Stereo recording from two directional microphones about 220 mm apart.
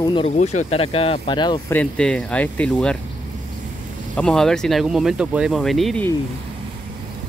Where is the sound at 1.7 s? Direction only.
5° left (ahead or behind).